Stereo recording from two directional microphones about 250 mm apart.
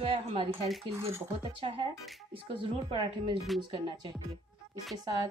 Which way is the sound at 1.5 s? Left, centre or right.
Right.